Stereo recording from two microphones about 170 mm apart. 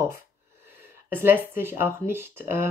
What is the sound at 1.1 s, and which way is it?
A woman's voice, 15° right (ahead or behind).